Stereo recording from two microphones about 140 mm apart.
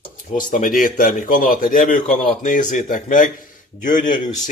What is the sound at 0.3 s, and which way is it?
A man's voice, 65° left (ahead or behind).